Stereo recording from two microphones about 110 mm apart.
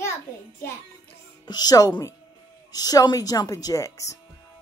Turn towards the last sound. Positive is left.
turn(degrees=30)  # may be behind; listen again after turning